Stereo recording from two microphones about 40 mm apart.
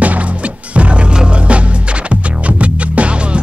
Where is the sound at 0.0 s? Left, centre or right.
Right.